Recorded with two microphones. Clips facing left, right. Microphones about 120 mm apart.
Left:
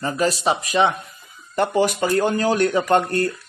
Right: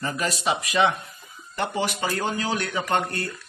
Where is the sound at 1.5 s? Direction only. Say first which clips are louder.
Left 8 dB; 45° left (ahead or behind).